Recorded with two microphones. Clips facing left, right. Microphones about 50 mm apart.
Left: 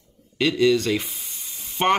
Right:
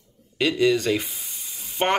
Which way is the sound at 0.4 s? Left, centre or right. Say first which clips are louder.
Left 1 dB; centre.